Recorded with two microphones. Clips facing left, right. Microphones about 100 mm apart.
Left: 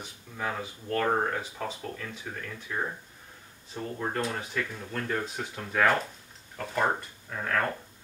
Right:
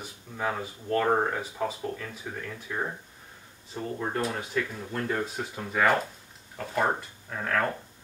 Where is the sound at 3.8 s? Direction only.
5° right (ahead or behind).